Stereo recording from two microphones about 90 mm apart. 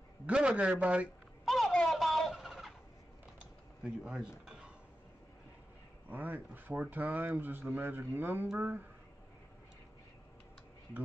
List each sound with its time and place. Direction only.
0.3 s a man's voice: 10° right (ahead or behind)
1.4 s a sound: centre (ahead or behind)
3.3 s typing: 10° right (ahead or behind)
6.0 s speech: 20° right (ahead or behind)